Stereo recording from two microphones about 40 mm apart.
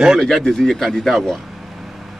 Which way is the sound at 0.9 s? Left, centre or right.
Centre.